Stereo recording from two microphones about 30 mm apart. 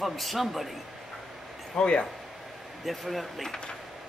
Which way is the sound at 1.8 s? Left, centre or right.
Left.